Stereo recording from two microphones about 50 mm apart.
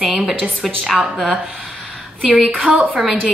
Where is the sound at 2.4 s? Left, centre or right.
Right.